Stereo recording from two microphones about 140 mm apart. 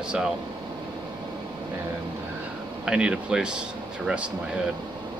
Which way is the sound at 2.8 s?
5° right (ahead or behind).